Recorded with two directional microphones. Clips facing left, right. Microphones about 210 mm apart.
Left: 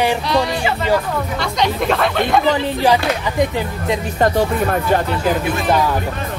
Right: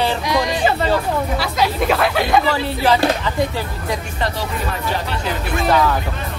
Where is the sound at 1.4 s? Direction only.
5° right (ahead or behind).